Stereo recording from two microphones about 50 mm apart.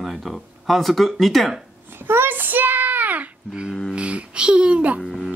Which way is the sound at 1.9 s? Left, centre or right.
Right.